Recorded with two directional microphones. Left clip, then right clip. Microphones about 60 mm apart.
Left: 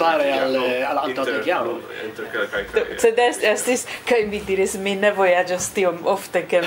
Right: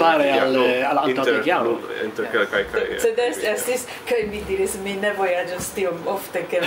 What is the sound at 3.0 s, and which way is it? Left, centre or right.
Speech, left.